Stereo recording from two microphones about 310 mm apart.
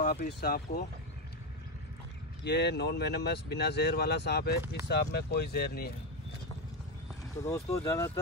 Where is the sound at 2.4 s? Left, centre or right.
Left.